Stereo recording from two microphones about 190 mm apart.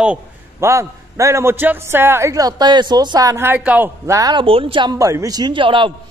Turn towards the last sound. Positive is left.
turn(degrees=-25)  # may be behind; listen again after turning